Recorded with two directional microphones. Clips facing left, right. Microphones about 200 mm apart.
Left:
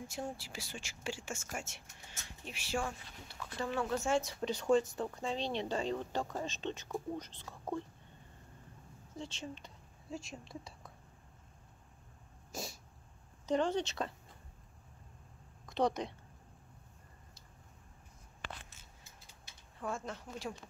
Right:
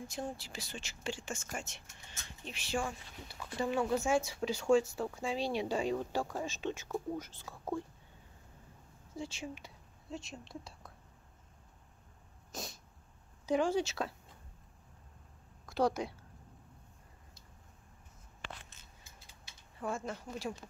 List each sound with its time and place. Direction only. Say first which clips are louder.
0.1 s speech: right 1 dB; 10° left (ahead or behind)
2.8 s speech: right 1 dB; 10° right (ahead or behind)
4.3 s speech: right 2 dB; centre (ahead or behind)
9.1 s speech: right 2 dB; 10° right (ahead or behind)
10.0 s speech: even; centre (ahead or behind)
13.5 s speech: right 2 dB; 10° right (ahead or behind)
15.6 s speech: right 1 dB; 5° right (ahead or behind)
18.4 s a sound: left 1 dB; 40° left (ahead or behind)
19.8 s speech: right 2 dB; 5° right (ahead or behind)